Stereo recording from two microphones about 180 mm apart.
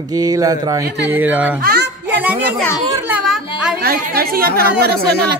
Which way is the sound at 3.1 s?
5° right (ahead or behind).